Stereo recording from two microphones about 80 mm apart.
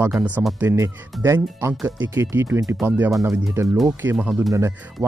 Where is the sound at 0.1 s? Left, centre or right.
Centre.